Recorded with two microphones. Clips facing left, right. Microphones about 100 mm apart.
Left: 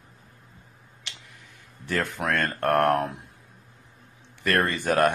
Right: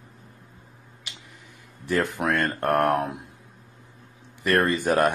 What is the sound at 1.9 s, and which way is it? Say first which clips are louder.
Speech: right 3 dB; 15° right (ahead or behind).